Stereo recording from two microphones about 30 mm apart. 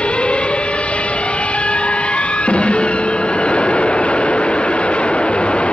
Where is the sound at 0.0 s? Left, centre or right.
Left.